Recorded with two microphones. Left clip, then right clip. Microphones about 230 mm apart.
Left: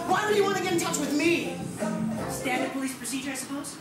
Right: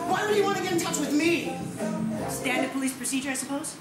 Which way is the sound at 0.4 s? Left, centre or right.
Centre.